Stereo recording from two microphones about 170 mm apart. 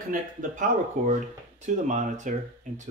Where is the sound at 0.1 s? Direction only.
50° right (ahead or behind).